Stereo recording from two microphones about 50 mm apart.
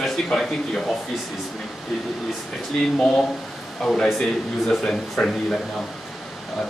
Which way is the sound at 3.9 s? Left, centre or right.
Centre.